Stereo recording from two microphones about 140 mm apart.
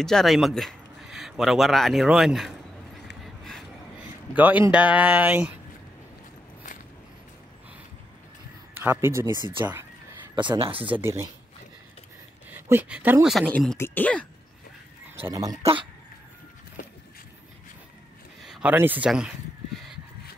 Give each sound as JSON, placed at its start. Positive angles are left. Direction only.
{"t": 0.0, "sound": "speech", "side_deg": 0}
{"t": 4.4, "sound": "speech", "side_deg": -10}
{"t": 8.7, "sound": "speech", "side_deg": -15}
{"t": 10.3, "sound": "speech", "side_deg": -35}
{"t": 11.0, "sound": "speech", "side_deg": -20}
{"t": 12.4, "sound": "speech", "side_deg": -15}
{"t": 13.3, "sound": "speech", "side_deg": 5}
{"t": 13.7, "sound": "speech", "side_deg": 15}
{"t": 15.2, "sound": "speech", "side_deg": -25}
{"t": 15.6, "sound": "speech", "side_deg": -35}
{"t": 18.5, "sound": "a sound", "side_deg": -10}